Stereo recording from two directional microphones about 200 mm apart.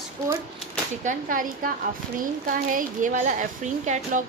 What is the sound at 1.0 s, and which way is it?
A woman's voice, 40° right (ahead or behind).